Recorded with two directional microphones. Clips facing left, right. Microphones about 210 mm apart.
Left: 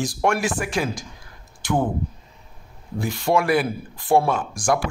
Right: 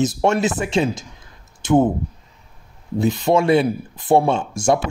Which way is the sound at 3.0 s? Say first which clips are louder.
Right 4 dB; 20° right (ahead or behind).